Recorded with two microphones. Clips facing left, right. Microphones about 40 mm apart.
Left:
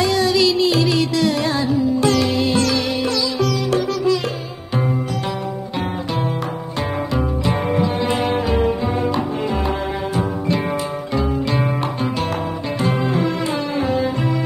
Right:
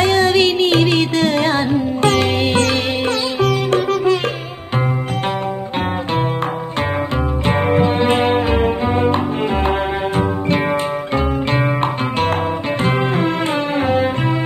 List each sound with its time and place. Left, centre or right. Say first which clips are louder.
0.0 s music: right 3 dB; right
7.4 s music: right 6 dB; right
12.8 s music: right 1 dB; right